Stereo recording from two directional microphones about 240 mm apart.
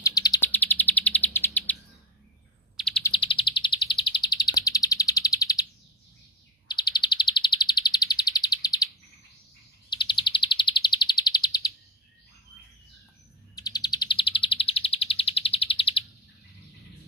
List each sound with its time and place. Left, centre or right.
0.0 s bird: centre
3.0 s chirp: left
6.7 s bird: centre
9.8 s chirp: centre
13.6 s bird: centre